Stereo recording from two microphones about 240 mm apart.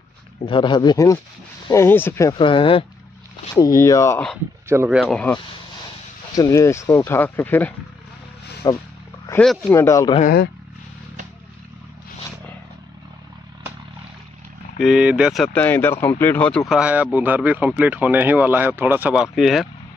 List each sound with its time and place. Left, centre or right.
0.5 s speech: centre
4.6 s speech: centre
10.1 s speech: left
14.8 s speech: centre